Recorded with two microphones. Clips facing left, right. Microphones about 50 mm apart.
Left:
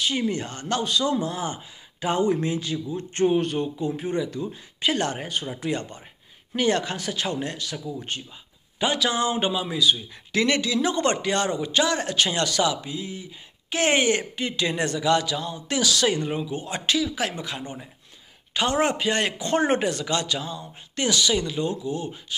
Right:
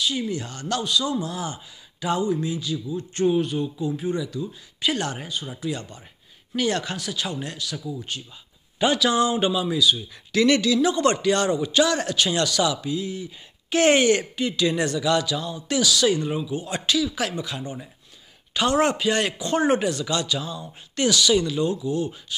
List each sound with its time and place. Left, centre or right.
0.0 s speech: left
6.5 s speech: left
7.0 s speech: left
7.7 s speech: left
10.8 s speech: left
17.1 s speech: left
17.4 s speech: left
18.5 s speech: left
20.3 s speech: left